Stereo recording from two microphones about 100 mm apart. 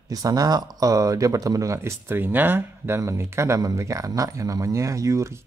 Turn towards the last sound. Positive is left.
turn(degrees=-30)  # may be behind; listen again after turning